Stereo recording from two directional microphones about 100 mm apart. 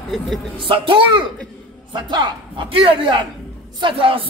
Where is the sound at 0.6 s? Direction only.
60° right (ahead or behind).